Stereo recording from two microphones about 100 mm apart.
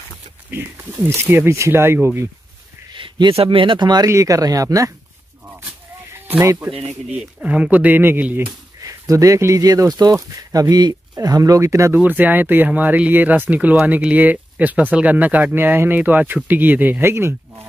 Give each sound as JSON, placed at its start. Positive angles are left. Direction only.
{"t": 0.5, "sound": "speech", "side_deg": -20}
{"t": 2.9, "sound": "speech", "side_deg": -50}
{"t": 4.1, "sound": "speech", "side_deg": -35}
{"t": 5.6, "sound": "a sound", "side_deg": -20}
{"t": 6.4, "sound": "speech", "side_deg": -30}
{"t": 6.7, "sound": "speech", "side_deg": -85}
{"t": 7.1, "sound": "speech", "side_deg": -10}
{"t": 8.8, "sound": "speech", "side_deg": -35}
{"t": 12.0, "sound": "speech", "side_deg": -20}